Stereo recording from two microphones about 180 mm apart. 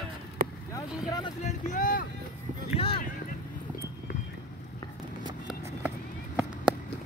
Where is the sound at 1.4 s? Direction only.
45° left (ahead or behind).